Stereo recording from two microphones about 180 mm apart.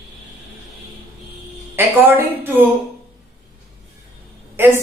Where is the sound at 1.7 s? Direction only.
10° right (ahead or behind).